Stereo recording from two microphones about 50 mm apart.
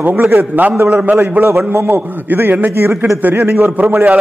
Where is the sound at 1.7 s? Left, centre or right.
Right.